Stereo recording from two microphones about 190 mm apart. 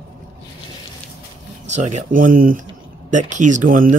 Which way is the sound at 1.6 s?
40° right (ahead or behind).